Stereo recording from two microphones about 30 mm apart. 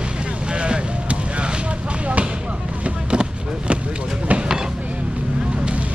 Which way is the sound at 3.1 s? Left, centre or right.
Right.